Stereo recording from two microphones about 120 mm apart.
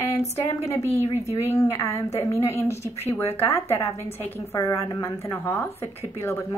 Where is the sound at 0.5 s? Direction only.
25° left (ahead or behind).